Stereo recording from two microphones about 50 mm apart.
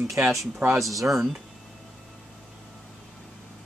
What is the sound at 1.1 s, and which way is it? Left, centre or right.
Speech, centre.